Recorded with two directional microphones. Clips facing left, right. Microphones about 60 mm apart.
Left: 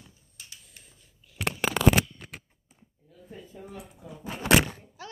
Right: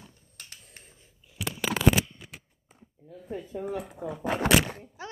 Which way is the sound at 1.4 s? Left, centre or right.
Left.